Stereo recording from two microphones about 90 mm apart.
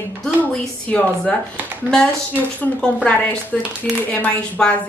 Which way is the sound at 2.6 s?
15° left (ahead or behind).